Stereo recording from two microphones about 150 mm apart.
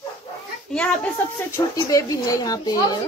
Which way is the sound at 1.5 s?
20° left (ahead or behind).